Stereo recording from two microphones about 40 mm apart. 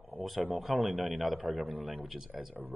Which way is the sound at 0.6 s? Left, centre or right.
Centre.